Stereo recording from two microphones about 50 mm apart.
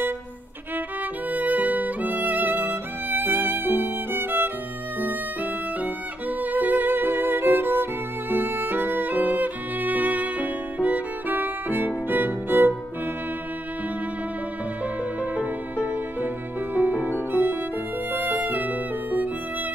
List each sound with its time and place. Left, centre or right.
1.3 s music: right
4.9 s violin: right
12.1 s music: right
14.8 s music: right